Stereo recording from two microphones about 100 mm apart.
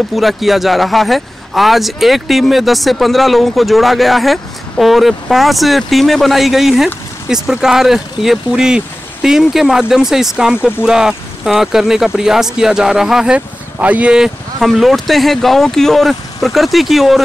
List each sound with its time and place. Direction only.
0.1 s speech: centre (ahead or behind)